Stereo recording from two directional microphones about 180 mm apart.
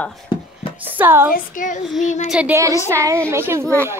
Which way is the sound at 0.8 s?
10° right (ahead or behind).